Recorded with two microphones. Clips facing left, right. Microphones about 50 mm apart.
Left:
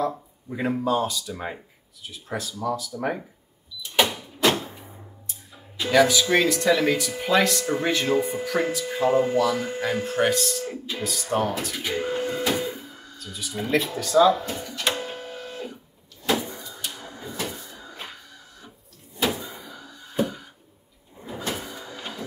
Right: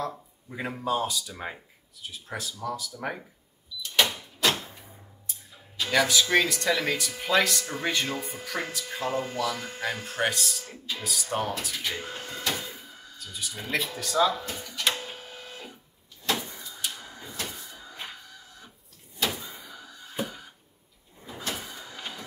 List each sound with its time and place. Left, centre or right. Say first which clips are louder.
0.0 s speech: left 7 dB; centre
3.8 s power windows: left 3 dB; centre
5.3 s speech: left 2 dB; centre
10.7 s speech: left 5 dB; centre
11.1 s speech: left 5 dB; centre
12.7 s a sound: left 5 dB; centre
16.3 s printer: left 5 dB; centre
19.1 s door: left 5 dB; centre
21.3 s printer: left 4 dB; centre